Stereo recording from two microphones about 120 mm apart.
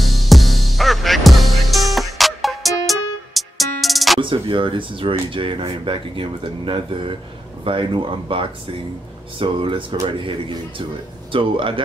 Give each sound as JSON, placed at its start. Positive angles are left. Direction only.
{"t": 0.0, "sound": "music", "side_deg": 0}
{"t": 4.2, "sound": "speech", "side_deg": -45}
{"t": 11.3, "sound": "speech", "side_deg": -45}